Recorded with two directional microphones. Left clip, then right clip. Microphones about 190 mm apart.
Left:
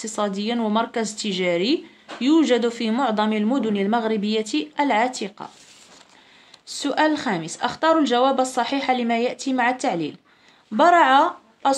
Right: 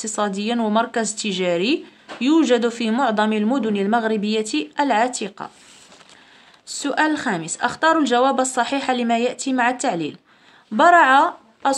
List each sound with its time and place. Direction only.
0.0 s speech: 20° right (ahead or behind)
6.7 s a woman's voice: 15° right (ahead or behind)